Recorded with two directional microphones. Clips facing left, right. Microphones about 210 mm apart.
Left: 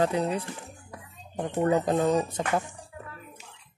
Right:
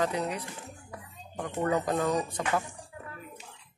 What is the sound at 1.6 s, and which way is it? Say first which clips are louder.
Speech: left 4 dB; 25° left (ahead or behind).